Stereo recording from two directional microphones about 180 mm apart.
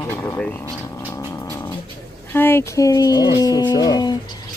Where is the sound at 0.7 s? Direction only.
15° left (ahead or behind).